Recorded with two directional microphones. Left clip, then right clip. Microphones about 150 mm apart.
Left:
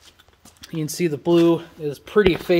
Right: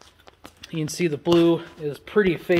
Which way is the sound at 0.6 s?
15° left (ahead or behind).